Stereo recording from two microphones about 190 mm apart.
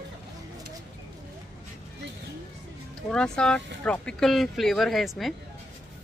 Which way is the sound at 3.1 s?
5° left (ahead or behind).